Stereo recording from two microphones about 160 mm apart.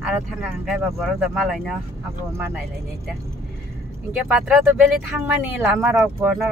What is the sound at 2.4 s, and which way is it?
Speech, 15° right (ahead or behind).